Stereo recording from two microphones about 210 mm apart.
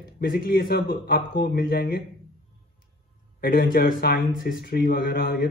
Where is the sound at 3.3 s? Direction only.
45° left (ahead or behind).